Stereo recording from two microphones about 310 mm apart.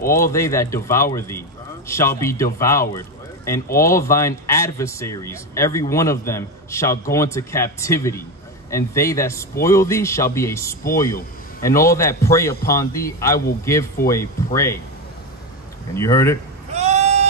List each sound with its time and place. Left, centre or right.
0.2 s speech: centre
15.9 s speech: centre
16.7 s a sound: right